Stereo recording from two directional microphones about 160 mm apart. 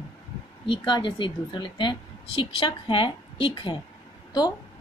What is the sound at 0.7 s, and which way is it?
A woman's voice, 30° left (ahead or behind).